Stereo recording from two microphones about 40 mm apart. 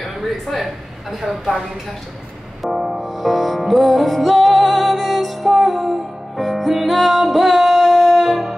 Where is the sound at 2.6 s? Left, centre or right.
Centre.